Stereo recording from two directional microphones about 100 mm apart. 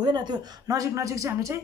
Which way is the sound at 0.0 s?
45° right (ahead or behind).